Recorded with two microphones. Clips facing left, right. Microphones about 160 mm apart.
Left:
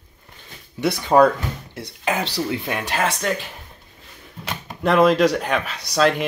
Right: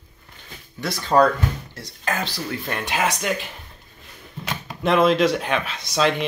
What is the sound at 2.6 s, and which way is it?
Speech, 5° left (ahead or behind).